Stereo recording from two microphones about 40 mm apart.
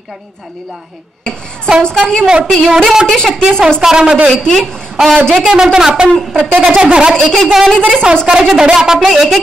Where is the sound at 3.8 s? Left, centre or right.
Centre.